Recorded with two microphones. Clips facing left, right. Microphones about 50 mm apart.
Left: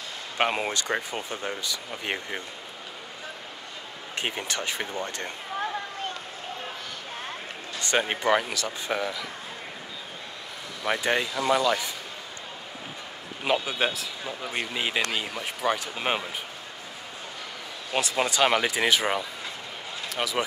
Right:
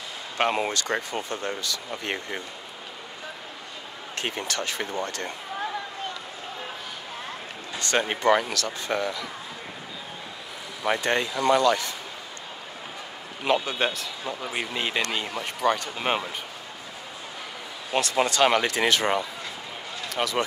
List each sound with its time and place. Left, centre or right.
0.4 s speech: centre
4.1 s speech: centre
7.8 s speech: centre
11.0 s speech: centre
13.4 s speech: centre
17.9 s speech: centre